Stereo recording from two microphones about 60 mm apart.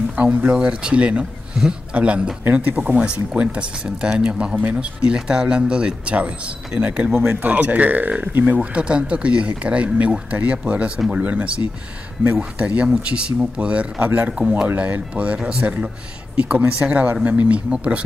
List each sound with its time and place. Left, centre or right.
0.1 s speech: right
7.2 s speech: right
7.4 s speech: right
8.5 s speech: centre